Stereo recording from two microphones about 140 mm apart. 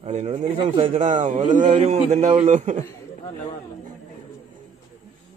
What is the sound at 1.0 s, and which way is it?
A man's voice, 60° right (ahead or behind).